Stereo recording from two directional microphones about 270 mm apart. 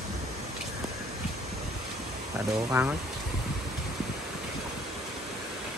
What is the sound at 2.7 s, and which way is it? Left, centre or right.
Speech, centre.